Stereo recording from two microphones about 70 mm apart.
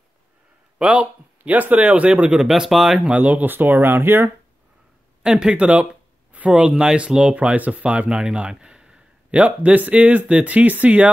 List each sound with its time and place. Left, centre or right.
0.7 s speech: centre
3.1 s speech: right
5.2 s speech: centre